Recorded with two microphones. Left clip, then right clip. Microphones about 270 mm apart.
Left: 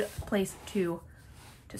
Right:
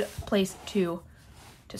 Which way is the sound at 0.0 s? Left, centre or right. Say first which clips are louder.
Right 3 dB; centre.